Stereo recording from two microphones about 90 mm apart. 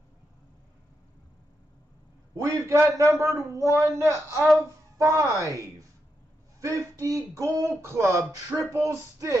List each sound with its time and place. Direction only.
2.4 s a man's voice: 35° right (ahead or behind)